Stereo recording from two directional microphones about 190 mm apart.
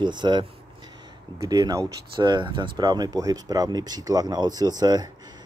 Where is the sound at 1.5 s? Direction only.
20° right (ahead or behind).